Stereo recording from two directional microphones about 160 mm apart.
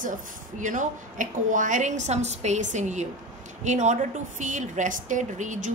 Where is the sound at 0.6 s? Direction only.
50° right (ahead or behind).